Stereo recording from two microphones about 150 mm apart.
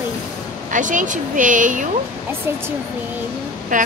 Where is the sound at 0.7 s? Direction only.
60° right (ahead or behind).